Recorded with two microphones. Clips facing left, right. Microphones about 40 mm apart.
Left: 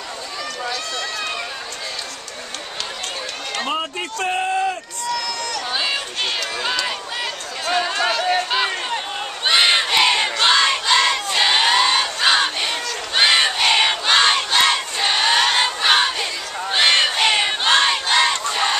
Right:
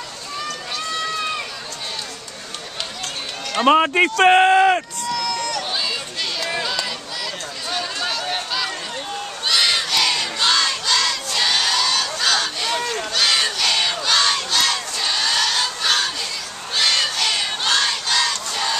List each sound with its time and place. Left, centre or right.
3.6 s a man's voice: right
5.0 s run: centre
5.7 s a sound: left
6.6 s speech: left
7.6 s a sound: left
8.4 s crowd: left
13.1 s battle cry: left
16.7 s a sound: left
17.1 s crowd: left
18.0 s battle cry: left